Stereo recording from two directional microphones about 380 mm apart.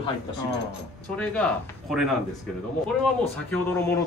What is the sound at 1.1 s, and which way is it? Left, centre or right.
Speech, centre.